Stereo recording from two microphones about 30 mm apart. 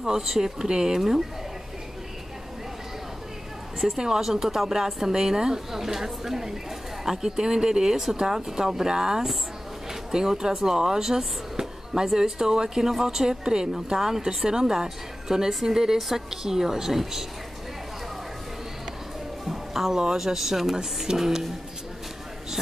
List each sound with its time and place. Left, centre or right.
0.0 s a woman's voice: centre
4.0 s a woman's voice: centre
19.4 s speech: centre
20.7 s a woman's voice: right